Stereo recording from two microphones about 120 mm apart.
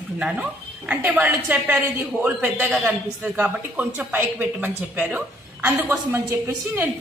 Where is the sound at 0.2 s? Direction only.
10° right (ahead or behind).